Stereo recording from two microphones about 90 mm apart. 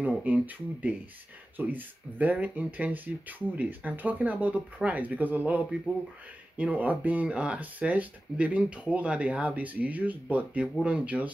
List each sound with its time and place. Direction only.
0.0 s speech: 15° right (ahead or behind)